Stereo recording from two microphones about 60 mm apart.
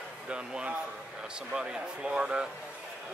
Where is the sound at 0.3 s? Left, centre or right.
Centre.